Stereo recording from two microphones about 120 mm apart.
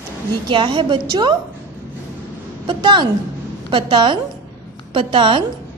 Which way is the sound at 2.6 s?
40° right (ahead or behind).